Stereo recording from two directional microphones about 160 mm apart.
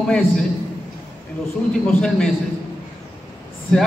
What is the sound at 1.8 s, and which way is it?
Speech, 5° left (ahead or behind).